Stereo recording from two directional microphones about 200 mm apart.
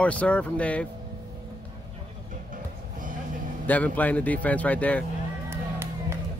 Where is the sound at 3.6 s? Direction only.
10° left (ahead or behind).